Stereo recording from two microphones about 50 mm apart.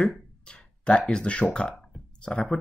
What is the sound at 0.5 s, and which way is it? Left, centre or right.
Speech, centre.